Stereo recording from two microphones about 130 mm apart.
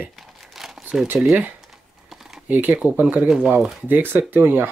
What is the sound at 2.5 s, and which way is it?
Speech, 10° right (ahead or behind).